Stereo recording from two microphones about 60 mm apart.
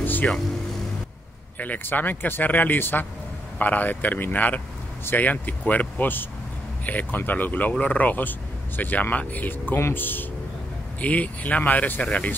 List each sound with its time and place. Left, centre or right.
0.0 s vehicle: left
1.6 s speech: left